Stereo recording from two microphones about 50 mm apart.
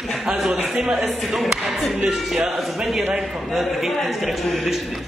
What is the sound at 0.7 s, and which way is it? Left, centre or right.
Speech, centre.